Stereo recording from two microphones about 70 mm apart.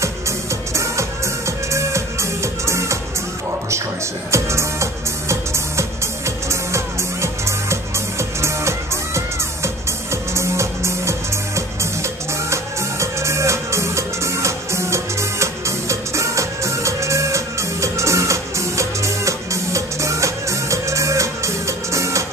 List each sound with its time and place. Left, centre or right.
0.7 s music: right
4.3 s music: right